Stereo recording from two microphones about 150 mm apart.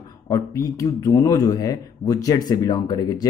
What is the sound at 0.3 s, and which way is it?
Speech, 25° left (ahead or behind).